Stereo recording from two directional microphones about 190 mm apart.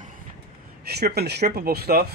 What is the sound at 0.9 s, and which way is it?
Speech, 60° right (ahead or behind).